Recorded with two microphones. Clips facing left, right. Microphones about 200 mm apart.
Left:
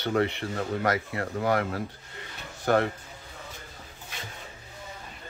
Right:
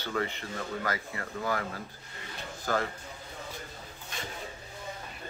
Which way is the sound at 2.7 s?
65° left (ahead or behind).